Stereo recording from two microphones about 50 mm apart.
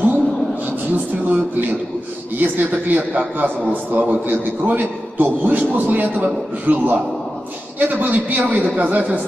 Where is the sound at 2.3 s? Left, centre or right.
Right.